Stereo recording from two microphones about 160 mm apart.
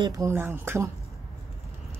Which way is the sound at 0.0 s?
20° right (ahead or behind).